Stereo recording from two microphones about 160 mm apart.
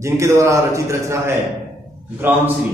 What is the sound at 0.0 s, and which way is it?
A man's voice, 20° right (ahead or behind).